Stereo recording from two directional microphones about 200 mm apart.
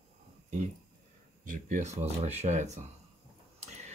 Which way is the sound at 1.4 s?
40° right (ahead or behind).